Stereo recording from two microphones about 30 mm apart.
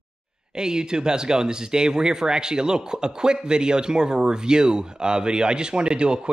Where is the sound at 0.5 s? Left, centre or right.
Right.